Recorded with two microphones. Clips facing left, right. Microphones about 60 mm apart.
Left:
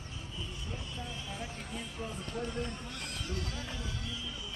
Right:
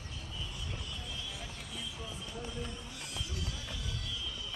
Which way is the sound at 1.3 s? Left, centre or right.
Left.